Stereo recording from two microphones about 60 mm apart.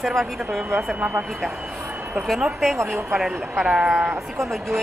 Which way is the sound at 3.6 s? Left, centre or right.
Centre.